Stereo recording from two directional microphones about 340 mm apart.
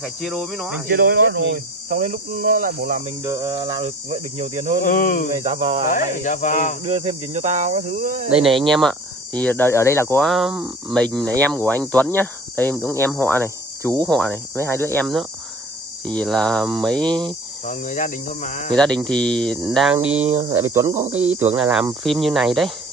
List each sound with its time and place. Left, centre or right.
0.0 s speech: centre
0.8 s speech: right
3.3 s speech: centre
4.8 s speech: left
5.3 s speech: centre
5.9 s speech: left
6.8 s speech: centre
8.3 s speech: centre
17.6 s speech: left
18.8 s speech: centre